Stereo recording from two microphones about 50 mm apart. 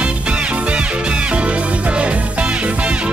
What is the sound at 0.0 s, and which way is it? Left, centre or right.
Music, right.